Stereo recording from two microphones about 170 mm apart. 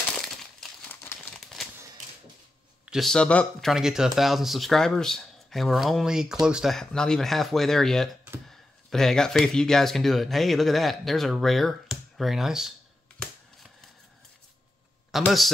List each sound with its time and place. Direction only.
0.1 s crumpling: centre (ahead or behind)
1.3 s a sound: centre (ahead or behind)
2.8 s speech: centre (ahead or behind)
15.0 s a man's voice: centre (ahead or behind)